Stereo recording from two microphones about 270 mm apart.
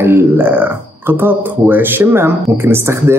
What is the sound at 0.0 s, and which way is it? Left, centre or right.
A man's voice, centre.